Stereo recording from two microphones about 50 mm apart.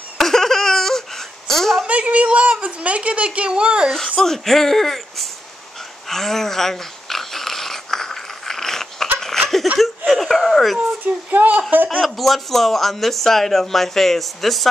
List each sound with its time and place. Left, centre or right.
0.2 s a sound: centre
1.9 s a sound: right
2.6 s speech: right
4.2 s speech: centre
6.0 s dog: centre
9.2 s laughter: centre
10.0 s speech: centre
11.2 s speech: right
12.0 s speech: centre